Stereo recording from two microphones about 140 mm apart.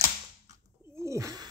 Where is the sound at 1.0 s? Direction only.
25° right (ahead or behind).